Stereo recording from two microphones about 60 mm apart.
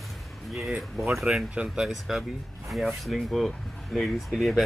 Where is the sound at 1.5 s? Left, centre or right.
Centre.